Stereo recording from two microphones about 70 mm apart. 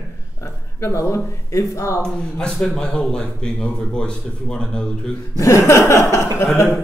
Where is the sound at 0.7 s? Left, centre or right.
Left.